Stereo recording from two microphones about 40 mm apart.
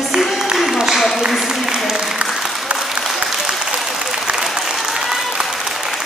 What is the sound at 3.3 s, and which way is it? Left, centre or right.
Applause, centre.